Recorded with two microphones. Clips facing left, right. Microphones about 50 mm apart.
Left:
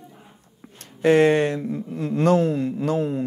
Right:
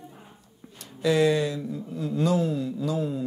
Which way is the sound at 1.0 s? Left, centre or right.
Left.